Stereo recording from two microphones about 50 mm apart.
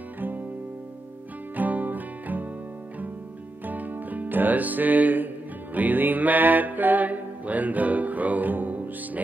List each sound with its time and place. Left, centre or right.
1.6 s music: right
3.6 s music: right